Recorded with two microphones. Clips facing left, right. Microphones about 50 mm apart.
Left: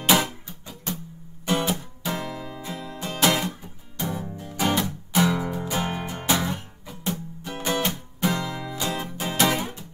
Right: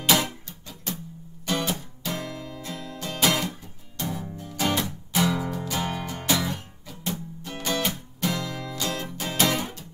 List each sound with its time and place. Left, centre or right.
0.0 s music: centre